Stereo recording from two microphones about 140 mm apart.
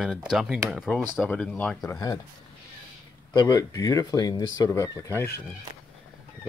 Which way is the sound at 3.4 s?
25° left (ahead or behind).